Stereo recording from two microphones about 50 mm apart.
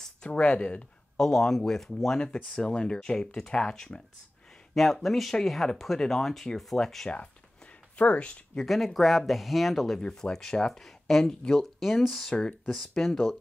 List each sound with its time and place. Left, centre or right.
0.3 s speech: left
1.1 s speech: centre
4.7 s speech: centre
7.1 s a sound: left
8.6 s speech: centre
10.3 s speech: centre